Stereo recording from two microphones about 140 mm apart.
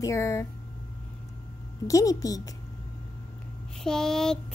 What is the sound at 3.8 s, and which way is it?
Child singing, 5° left (ahead or behind).